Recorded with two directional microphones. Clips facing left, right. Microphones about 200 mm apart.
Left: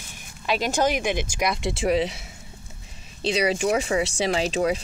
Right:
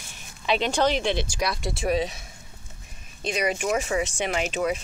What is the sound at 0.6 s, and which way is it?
Speech, 10° left (ahead or behind).